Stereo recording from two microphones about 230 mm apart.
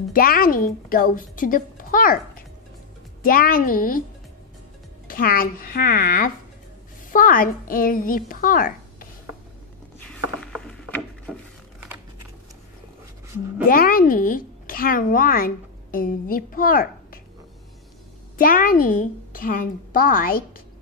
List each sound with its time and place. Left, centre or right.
0.1 s a woman's voice: left
5.0 s a woman's voice: left
9.9 s mechanisms: centre
13.7 s speech: left
18.4 s a woman's voice: left